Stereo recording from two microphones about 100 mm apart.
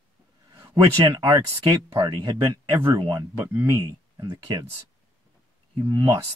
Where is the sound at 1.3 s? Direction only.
45° right (ahead or behind).